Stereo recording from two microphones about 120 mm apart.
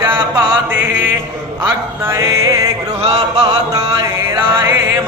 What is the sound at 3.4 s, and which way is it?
Music, 30° right (ahead or behind).